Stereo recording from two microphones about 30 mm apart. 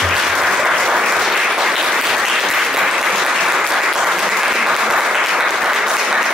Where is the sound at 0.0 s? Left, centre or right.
Centre.